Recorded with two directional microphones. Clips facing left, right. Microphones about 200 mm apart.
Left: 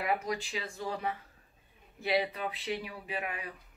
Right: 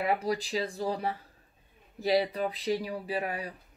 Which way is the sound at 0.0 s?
30° right (ahead or behind).